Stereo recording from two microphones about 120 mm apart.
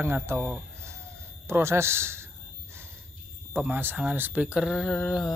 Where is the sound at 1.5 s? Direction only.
20° right (ahead or behind).